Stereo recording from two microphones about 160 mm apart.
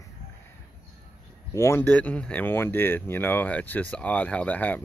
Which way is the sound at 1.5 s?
15° left (ahead or behind).